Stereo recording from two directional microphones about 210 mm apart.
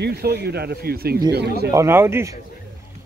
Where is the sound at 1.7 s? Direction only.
15° right (ahead or behind).